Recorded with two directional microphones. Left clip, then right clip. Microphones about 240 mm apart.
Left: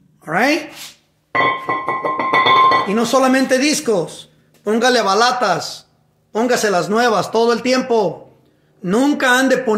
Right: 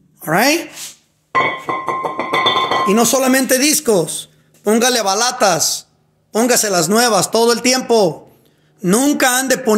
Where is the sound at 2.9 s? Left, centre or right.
Right.